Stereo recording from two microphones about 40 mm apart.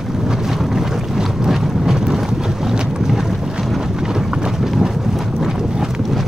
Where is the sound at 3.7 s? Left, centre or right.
Centre.